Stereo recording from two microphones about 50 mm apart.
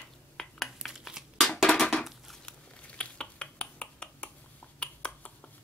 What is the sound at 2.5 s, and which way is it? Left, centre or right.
Finger snapping, centre.